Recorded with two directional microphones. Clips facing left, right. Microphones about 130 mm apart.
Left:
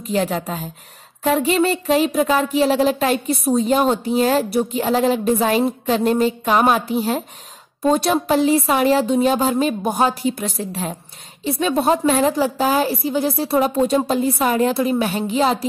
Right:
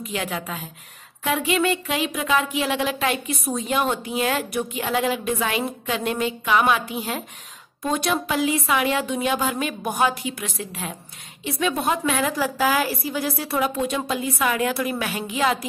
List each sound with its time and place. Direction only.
0.0 s a woman's voice: 35° left (ahead or behind)